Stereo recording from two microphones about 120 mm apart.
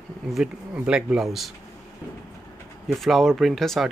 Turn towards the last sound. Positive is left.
turn(degrees=0)  # may be behind; listen again after turning